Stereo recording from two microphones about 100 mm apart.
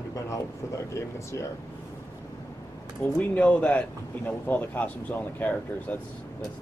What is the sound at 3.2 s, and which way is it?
Speech, 10° left (ahead or behind).